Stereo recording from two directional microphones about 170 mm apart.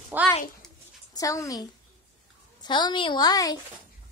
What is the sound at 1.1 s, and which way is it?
A woman's voice, 20° left (ahead or behind).